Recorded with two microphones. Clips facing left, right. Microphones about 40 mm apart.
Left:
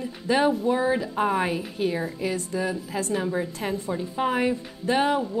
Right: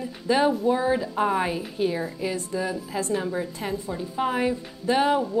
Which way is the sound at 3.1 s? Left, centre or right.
Centre.